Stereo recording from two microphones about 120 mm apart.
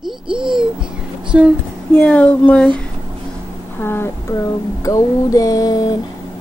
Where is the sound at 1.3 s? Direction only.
5° right (ahead or behind).